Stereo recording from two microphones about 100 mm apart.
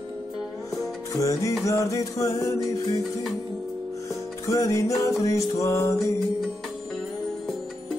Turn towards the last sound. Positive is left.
turn(degrees=30)  # may be behind; listen again after turning